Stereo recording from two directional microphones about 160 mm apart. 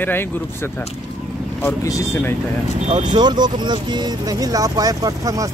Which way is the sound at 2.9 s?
30° right (ahead or behind).